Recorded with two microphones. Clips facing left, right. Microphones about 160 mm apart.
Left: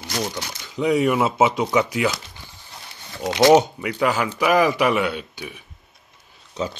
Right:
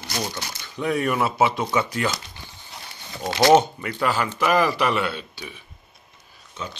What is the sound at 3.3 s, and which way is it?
Speech, 15° left (ahead or behind).